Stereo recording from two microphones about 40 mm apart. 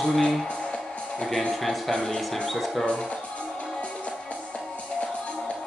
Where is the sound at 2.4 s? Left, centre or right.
Centre.